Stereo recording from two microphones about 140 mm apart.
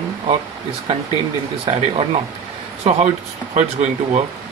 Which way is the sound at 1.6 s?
40° right (ahead or behind).